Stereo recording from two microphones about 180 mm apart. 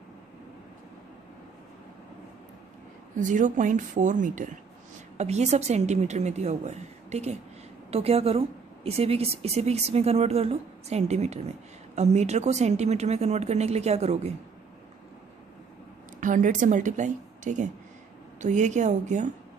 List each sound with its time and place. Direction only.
3.2 s a woman's voice: 45° right (ahead or behind)
16.2 s a woman's voice: 45° right (ahead or behind)